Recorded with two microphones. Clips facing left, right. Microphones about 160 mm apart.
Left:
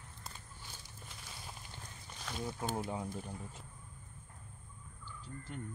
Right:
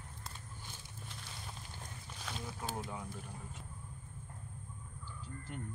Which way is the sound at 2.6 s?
30° left (ahead or behind).